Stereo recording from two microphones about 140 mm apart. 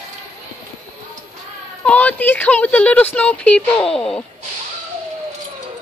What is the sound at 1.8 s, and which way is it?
Speech, 10° left (ahead or behind).